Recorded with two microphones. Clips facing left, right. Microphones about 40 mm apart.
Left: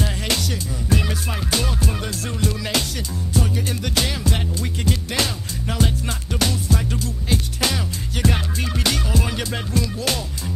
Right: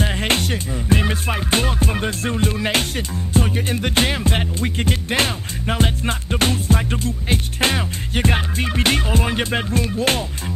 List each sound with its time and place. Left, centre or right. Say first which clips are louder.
0.0 s music: right 4 dB; right